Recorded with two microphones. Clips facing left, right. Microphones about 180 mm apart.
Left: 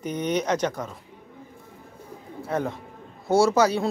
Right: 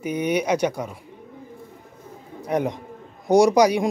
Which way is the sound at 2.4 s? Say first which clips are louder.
Right 4 dB; 15° right (ahead or behind).